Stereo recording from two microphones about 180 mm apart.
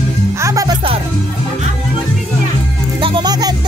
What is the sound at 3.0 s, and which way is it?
Music, 30° right (ahead or behind).